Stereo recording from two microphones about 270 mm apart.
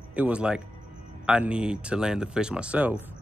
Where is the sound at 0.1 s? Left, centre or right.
Centre.